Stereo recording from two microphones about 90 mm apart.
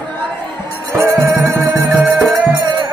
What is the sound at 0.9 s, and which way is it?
Music, 25° right (ahead or behind).